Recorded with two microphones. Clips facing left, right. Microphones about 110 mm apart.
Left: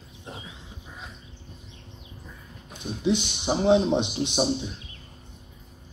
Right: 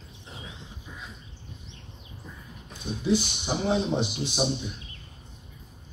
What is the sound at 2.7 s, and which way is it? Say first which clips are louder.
A man's voice: even; 20° left (ahead or behind).